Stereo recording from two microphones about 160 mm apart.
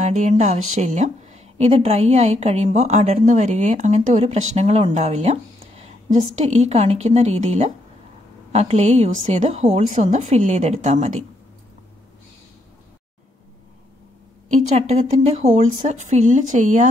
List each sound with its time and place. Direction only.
0.0 s a woman's voice: 50° right (ahead or behind)
14.8 s a woman's voice: 40° right (ahead or behind)